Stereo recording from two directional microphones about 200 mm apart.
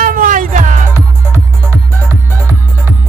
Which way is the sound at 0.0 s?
45° right (ahead or behind).